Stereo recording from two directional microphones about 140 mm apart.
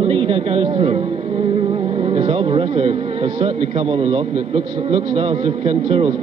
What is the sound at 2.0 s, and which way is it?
A man's voice, 45° right (ahead or behind).